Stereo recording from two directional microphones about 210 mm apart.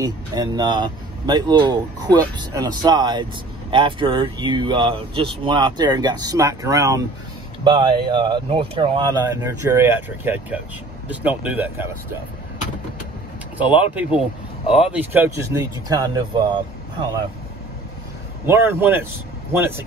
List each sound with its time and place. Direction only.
0.0 s speech: 20° right (ahead or behind)
13.6 s speech: 5° right (ahead or behind)
15.6 s speech: 15° right (ahead or behind)
18.4 s speech: 10° right (ahead or behind)